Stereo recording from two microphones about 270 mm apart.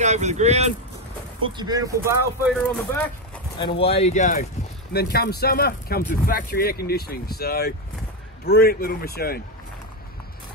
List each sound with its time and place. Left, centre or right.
0.0 s speech: right
2.5 s speech: centre
3.5 s speech: centre
4.9 s speech: left